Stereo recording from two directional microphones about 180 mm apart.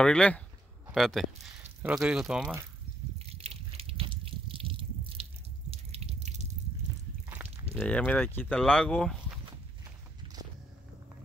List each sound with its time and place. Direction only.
0.0 s speech: 5° left (ahead or behind)
3.3 s a sound: 35° right (ahead or behind)
5.7 s drip: 35° right (ahead or behind)
7.4 s pour: 35° right (ahead or behind)
7.7 s speech: 5° left (ahead or behind)